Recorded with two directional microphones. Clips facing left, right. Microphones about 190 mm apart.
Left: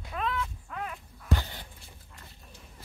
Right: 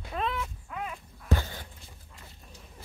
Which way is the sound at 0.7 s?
5° right (ahead or behind).